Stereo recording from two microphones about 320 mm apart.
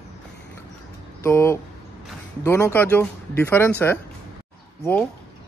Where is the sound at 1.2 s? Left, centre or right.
Centre.